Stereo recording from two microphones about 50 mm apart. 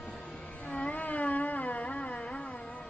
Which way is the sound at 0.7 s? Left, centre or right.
Left.